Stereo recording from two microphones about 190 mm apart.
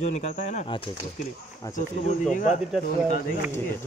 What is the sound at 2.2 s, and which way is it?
Speech, 40° left (ahead or behind).